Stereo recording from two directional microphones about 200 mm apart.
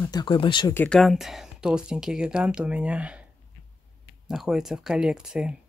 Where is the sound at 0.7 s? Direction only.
5° left (ahead or behind).